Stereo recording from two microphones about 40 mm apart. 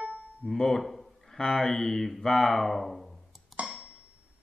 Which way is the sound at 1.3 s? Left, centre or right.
Centre.